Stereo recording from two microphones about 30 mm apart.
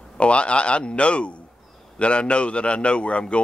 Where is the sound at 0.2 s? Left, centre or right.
Left.